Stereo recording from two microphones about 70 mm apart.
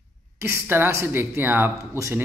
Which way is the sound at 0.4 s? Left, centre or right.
Right.